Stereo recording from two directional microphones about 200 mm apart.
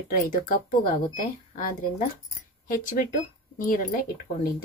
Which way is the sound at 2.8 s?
40° left (ahead or behind).